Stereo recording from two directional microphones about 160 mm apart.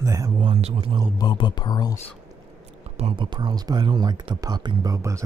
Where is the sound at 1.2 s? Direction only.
30° left (ahead or behind).